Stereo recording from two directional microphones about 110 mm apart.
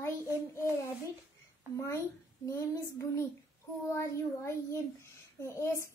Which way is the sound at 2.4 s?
30° left (ahead or behind).